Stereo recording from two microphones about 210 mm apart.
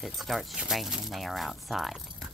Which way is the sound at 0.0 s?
Centre (ahead or behind).